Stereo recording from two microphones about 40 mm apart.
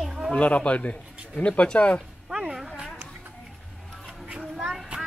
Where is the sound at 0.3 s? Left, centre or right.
Left.